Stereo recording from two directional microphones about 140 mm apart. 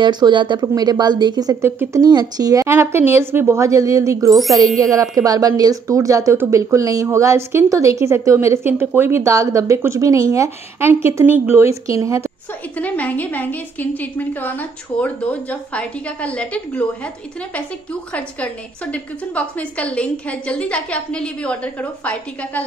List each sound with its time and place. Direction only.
0.0 s a woman's voice: 35° right (ahead or behind)
12.7 s a woman's voice: 10° left (ahead or behind)
18.1 s a woman's voice: 10° left (ahead or behind)